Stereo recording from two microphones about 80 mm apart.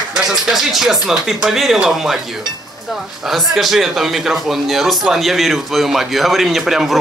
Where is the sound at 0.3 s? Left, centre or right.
Centre.